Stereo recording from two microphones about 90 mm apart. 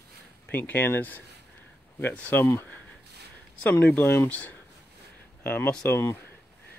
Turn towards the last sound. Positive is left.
turn(degrees=35)  # may be behind; listen again after turning